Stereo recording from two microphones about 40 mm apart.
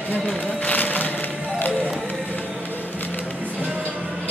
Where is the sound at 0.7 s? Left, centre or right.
Left.